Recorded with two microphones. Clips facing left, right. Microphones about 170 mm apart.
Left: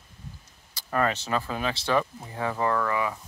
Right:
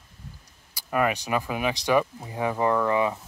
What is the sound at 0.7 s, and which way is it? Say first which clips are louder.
Speech: right 2 dB; 10° right (ahead or behind).